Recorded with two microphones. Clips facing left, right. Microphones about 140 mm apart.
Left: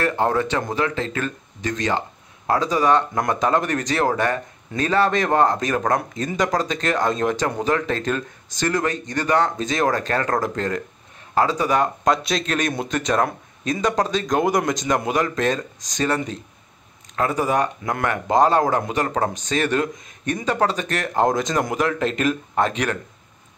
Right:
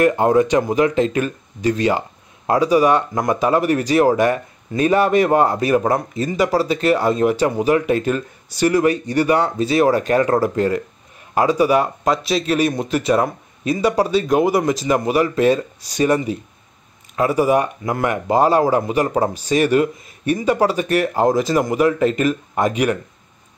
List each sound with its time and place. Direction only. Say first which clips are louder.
0.0 s speech: right 6 dB; 15° right (ahead or behind)